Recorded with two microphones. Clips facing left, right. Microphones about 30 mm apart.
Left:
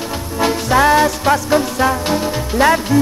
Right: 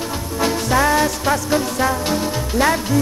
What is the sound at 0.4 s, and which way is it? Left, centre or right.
Music, centre.